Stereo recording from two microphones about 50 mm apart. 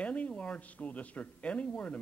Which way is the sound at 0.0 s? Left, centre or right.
Left.